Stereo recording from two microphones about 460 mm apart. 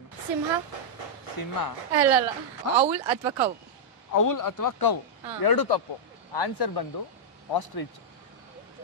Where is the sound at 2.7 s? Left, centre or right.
Centre.